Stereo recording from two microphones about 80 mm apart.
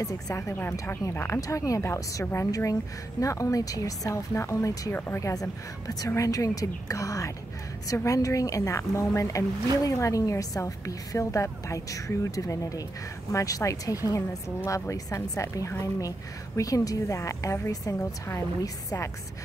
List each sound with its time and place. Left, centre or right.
0.0 s a woman's voice: left
0.6 s a woman's voice: left